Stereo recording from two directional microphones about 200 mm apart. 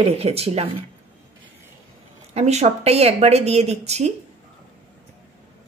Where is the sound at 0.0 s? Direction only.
30° right (ahead or behind).